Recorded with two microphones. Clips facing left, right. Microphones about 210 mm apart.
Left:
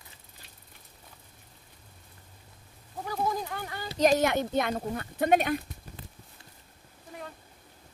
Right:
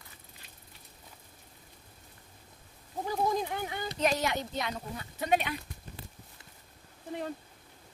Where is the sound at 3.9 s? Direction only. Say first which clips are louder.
Left 7 dB; 40° left (ahead or behind).